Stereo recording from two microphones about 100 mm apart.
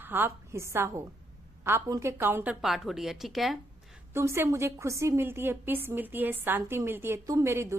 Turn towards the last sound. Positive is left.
turn(degrees=-30)  # may be behind; listen again after turning